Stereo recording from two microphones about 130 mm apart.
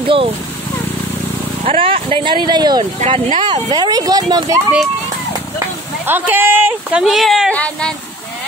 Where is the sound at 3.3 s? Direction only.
35° right (ahead or behind).